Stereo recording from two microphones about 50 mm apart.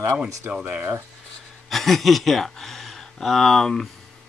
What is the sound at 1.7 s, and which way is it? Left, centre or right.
Speech, centre.